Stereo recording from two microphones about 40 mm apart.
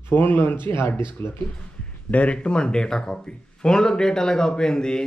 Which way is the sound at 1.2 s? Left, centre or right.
Left.